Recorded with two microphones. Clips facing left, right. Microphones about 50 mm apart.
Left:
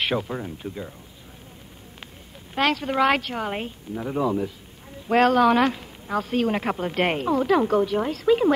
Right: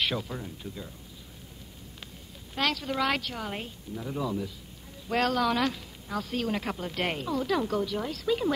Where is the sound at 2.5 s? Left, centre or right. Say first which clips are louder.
Left 7 dB; left.